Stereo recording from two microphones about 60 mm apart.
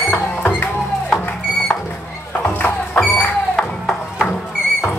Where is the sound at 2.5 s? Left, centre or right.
Left.